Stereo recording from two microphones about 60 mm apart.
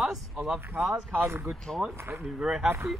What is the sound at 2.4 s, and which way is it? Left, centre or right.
Speech, centre.